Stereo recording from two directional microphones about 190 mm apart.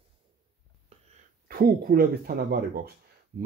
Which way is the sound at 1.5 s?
50° right (ahead or behind).